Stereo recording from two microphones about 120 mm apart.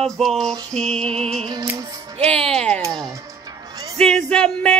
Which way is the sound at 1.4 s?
35° right (ahead or behind).